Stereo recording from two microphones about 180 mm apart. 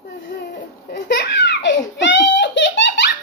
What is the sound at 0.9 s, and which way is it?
A child's voice, 65° left (ahead or behind).